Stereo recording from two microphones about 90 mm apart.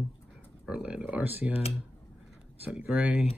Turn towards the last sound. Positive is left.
turn(degrees=-20)  # may be behind; listen again after turning